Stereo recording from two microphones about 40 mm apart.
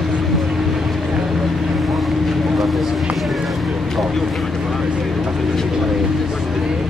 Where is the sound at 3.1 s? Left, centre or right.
Centre.